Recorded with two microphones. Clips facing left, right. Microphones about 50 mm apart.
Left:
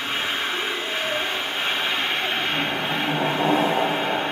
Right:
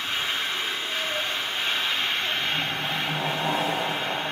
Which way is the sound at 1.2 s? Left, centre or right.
Centre.